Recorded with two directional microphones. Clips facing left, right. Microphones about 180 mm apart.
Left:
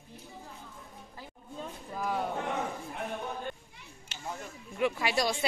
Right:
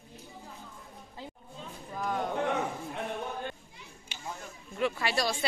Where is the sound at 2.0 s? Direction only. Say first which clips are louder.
Even; 5° left (ahead or behind).